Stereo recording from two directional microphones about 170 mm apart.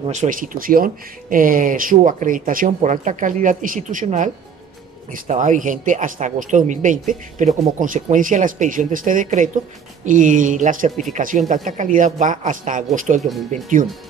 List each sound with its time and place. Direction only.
0.0 s speech: 45° right (ahead or behind)